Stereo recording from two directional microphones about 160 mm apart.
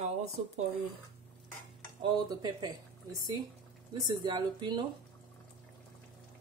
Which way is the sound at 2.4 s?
25° right (ahead or behind).